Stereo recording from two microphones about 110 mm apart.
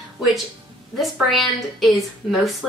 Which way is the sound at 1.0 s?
Centre (ahead or behind).